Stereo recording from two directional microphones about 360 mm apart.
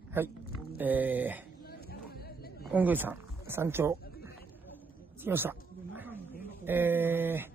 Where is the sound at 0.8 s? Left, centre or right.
Centre.